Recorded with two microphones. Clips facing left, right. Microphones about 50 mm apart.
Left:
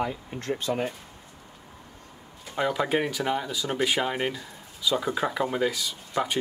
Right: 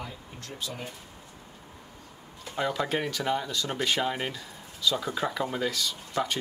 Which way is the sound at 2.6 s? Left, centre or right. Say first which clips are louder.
Left 3 dB; centre.